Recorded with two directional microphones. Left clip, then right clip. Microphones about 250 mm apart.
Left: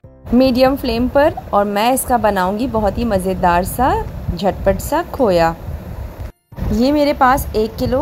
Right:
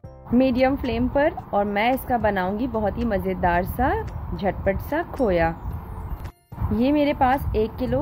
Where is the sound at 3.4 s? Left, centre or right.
Centre.